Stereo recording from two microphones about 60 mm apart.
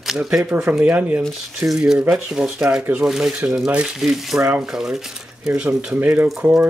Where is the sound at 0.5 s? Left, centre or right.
Right.